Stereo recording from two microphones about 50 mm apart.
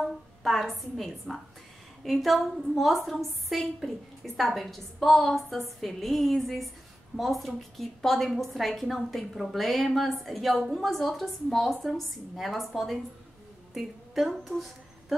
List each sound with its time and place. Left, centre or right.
0.0 s a woman's voice: centre